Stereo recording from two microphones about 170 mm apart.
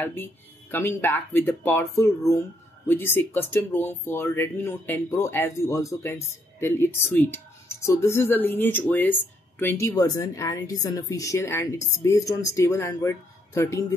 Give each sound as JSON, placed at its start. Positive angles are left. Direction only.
{"t": 0.0, "sound": "a woman's voice", "side_deg": 10}